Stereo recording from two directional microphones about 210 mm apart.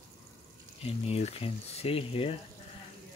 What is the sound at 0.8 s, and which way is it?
Speech, 30° left (ahead or behind).